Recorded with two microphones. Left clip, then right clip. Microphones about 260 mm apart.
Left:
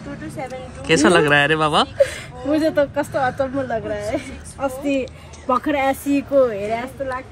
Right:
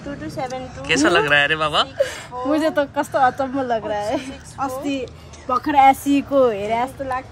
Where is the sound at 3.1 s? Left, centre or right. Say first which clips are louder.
Right 4 dB; right.